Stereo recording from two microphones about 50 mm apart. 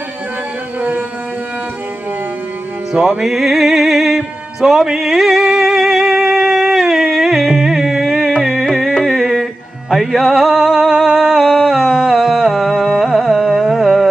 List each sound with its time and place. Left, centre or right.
3.2 s music: centre
8.5 s music: centre